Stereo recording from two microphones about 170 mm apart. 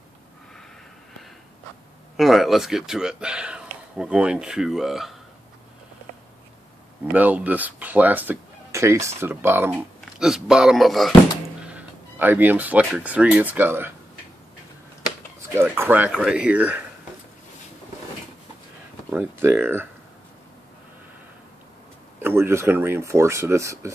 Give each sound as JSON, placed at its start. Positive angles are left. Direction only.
{"t": 2.1, "sound": "speech", "side_deg": 0}
{"t": 7.1, "sound": "speech", "side_deg": -10}
{"t": 15.7, "sound": "speech", "side_deg": -10}
{"t": 19.1, "sound": "speech", "side_deg": -10}
{"t": 22.2, "sound": "speech", "side_deg": -15}